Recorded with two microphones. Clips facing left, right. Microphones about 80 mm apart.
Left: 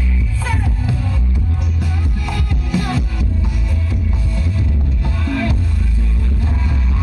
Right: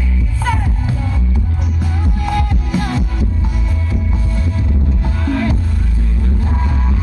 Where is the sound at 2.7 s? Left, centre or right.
Right.